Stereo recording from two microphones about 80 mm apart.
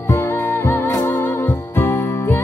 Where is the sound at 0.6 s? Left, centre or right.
Left.